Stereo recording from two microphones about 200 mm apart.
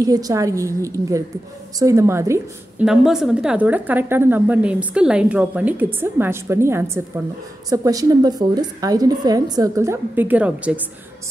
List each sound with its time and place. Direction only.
0.0 s a woman's voice: 15° right (ahead or behind)
2.9 s a woman's voice: centre (ahead or behind)